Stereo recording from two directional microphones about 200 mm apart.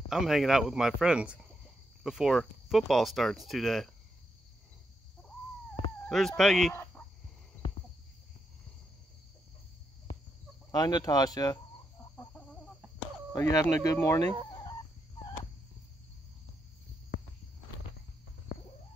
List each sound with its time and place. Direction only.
0.1 s speech: centre (ahead or behind)
6.0 s speech: centre (ahead or behind)
6.7 s a sound: 10° left (ahead or behind)
10.7 s speech: 20° left (ahead or behind)
13.3 s speech: 15° left (ahead or behind)
14.5 s chicken: 20° left (ahead or behind)